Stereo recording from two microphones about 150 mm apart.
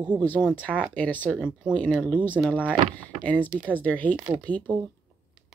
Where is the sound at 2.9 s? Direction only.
10° left (ahead or behind).